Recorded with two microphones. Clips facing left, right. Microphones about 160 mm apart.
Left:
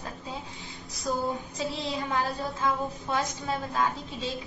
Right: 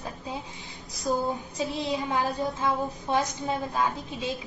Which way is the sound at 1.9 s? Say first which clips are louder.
Right 2 dB; 15° right (ahead or behind).